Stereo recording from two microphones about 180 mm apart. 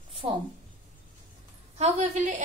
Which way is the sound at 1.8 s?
40° right (ahead or behind).